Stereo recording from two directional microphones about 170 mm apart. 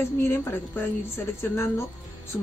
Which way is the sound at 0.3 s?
15° left (ahead or behind).